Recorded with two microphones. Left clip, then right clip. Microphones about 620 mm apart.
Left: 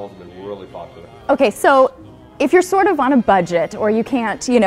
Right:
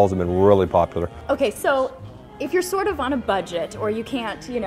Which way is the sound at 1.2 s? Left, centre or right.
Left.